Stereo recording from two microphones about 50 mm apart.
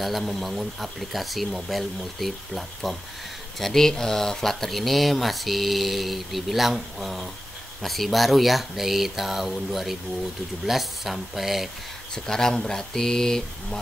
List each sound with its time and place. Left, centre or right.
0.0 s speech: centre
12.3 s speech: centre